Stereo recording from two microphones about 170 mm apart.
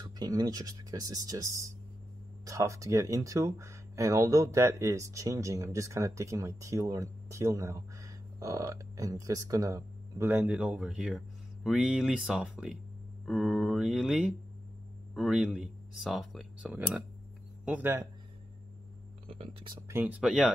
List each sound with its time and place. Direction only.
0.0 s speech: 25° right (ahead or behind)
19.2 s speech: 35° right (ahead or behind)
19.9 s speech: 15° right (ahead or behind)
20.2 s speech: 5° right (ahead or behind)